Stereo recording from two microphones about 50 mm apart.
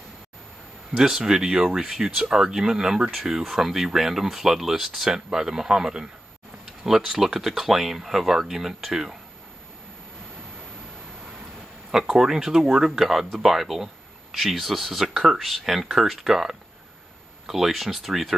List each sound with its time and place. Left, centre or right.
0.9 s speech: centre
11.9 s speech: centre